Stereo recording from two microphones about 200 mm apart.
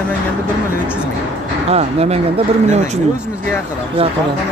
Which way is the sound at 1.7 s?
30° right (ahead or behind).